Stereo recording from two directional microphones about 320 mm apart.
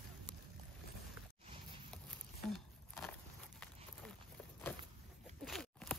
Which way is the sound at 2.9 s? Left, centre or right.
Centre.